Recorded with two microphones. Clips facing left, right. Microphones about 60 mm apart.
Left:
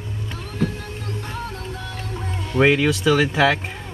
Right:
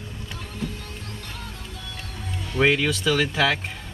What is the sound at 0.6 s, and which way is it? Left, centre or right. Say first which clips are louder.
Printer: left 8 dB; left.